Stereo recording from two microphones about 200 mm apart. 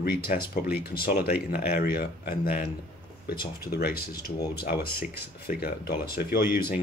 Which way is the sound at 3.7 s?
50° left (ahead or behind).